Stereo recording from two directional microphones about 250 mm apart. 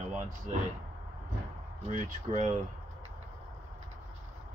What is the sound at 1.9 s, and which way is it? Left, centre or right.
Speech, right.